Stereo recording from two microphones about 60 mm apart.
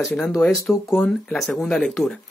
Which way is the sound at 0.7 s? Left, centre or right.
Left.